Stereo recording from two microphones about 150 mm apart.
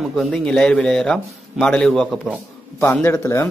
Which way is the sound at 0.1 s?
5° left (ahead or behind).